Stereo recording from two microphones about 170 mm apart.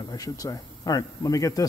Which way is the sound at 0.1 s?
20° left (ahead or behind).